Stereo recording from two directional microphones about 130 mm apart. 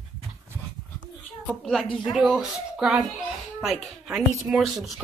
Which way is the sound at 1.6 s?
Centre (ahead or behind).